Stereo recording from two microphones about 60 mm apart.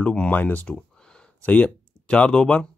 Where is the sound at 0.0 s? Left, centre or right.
Left.